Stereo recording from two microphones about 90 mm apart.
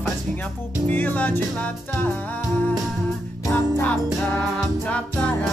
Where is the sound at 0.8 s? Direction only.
20° left (ahead or behind).